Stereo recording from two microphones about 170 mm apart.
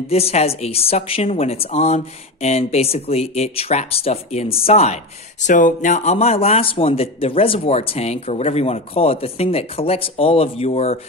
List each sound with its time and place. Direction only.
0.1 s a woman's voice: 40° left (ahead or behind)